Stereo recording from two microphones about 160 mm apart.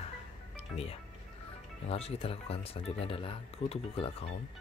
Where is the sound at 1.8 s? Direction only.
40° left (ahead or behind).